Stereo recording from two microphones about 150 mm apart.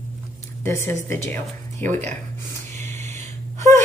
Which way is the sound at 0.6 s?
15° left (ahead or behind).